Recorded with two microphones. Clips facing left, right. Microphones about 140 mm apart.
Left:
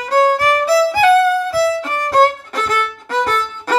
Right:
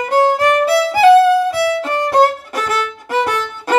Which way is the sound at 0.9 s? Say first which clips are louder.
Right 3 dB; 20° right (ahead or behind).